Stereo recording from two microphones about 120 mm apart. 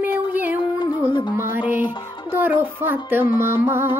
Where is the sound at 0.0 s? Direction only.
15° right (ahead or behind).